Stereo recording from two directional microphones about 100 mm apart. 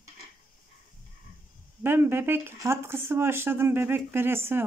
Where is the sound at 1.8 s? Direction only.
20° right (ahead or behind).